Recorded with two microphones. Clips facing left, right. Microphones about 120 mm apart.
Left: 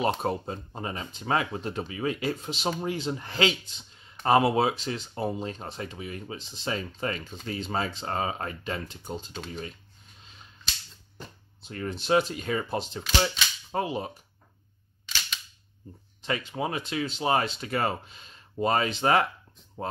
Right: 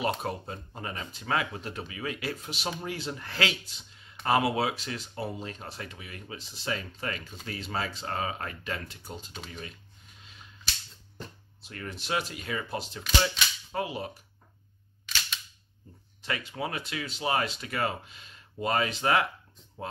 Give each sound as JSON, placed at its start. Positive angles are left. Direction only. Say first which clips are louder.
{"t": 0.0, "sound": "speech", "louder": "left 4 dB", "side_deg": 25}
{"t": 11.6, "sound": "speech", "louder": "left 6 dB", "side_deg": 30}
{"t": 16.2, "sound": "speech", "louder": "left 4 dB", "side_deg": 25}